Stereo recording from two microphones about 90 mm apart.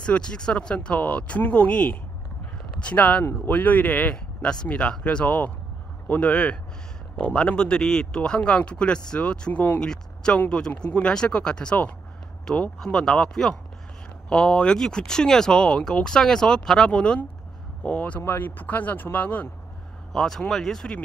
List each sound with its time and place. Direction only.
0.0 s speech: 10° left (ahead or behind)
20.1 s speech: 5° left (ahead or behind)